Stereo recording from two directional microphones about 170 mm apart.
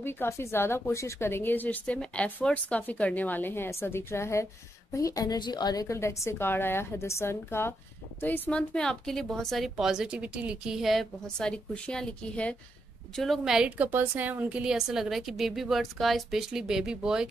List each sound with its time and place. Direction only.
0.0 s a woman's voice: 15° left (ahead or behind); by 17.3 s 5° right (ahead or behind)